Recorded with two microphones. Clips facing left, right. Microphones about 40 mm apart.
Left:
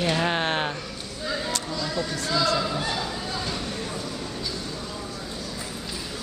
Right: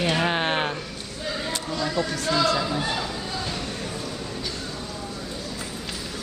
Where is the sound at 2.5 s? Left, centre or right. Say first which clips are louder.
Right 1 dB; centre.